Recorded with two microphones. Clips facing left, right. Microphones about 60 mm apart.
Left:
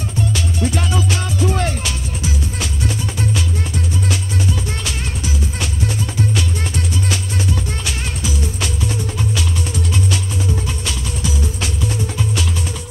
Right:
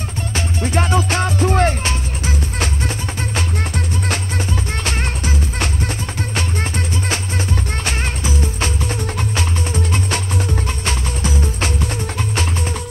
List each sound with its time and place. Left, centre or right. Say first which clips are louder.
0.3 s music: right 3 dB; right